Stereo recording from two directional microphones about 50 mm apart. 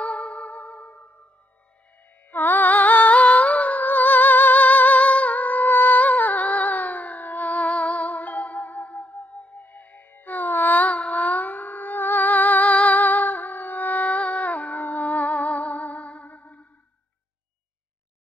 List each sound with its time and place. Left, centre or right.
0.0 s music: left
2.3 s humming: left